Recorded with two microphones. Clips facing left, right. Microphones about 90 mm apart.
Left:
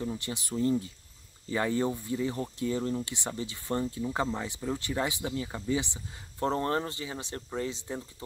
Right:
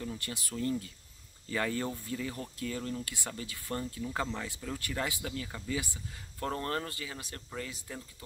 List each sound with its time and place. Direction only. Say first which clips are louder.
0.0 s speech: left 5 dB; 20° left (ahead or behind)